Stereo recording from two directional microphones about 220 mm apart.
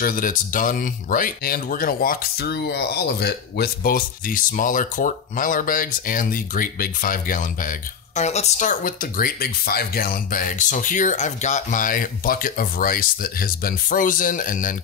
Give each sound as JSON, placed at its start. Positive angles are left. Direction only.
{"t": 0.0, "sound": "speech", "side_deg": 40}